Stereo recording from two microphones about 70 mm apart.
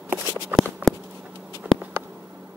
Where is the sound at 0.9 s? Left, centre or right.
Centre.